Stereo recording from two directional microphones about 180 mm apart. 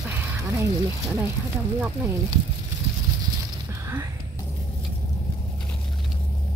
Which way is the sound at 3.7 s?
15° right (ahead or behind).